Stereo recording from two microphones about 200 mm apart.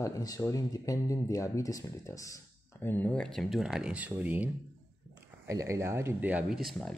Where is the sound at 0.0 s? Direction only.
15° left (ahead or behind); by 4.5 s 5° right (ahead or behind).